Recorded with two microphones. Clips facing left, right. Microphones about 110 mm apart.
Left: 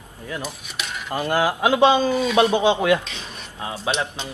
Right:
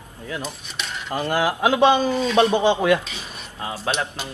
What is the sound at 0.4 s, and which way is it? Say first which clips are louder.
Dishes: even; 5° left (ahead or behind).